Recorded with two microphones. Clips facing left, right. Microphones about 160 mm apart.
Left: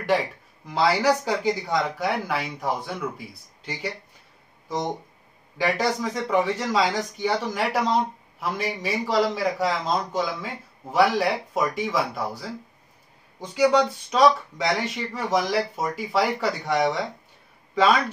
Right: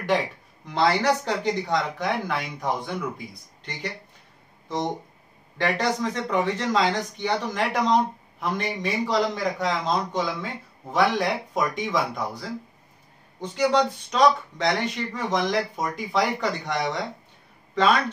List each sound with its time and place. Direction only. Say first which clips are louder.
0.7 s speech: left 1 dB; 5° left (ahead or behind)
5.6 s a man's voice: even; 10° left (ahead or behind)